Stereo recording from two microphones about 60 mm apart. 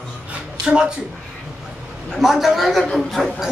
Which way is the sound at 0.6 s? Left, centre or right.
Centre.